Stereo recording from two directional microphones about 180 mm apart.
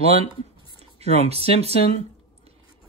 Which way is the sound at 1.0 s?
35° right (ahead or behind).